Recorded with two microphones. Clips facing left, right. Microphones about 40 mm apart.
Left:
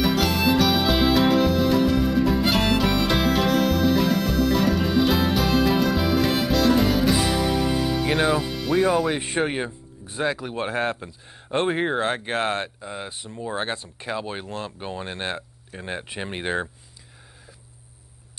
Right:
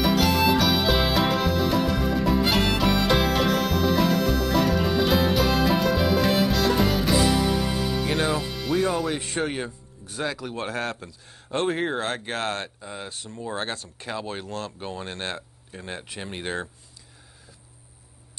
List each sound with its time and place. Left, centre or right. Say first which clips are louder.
0.0 s music: even; centre
9.1 s speech: left 3 dB; left